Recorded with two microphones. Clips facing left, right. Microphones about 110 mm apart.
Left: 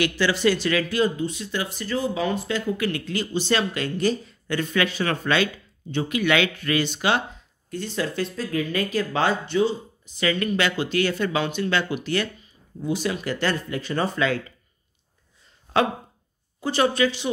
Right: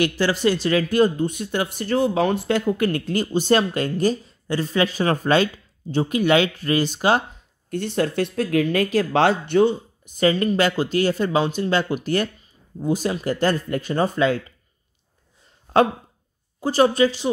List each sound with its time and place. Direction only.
0.0 s speech: 40° right (ahead or behind)
7.7 s speech: 55° right (ahead or behind)
10.2 s speech: 35° right (ahead or behind)
16.6 s speech: 40° right (ahead or behind)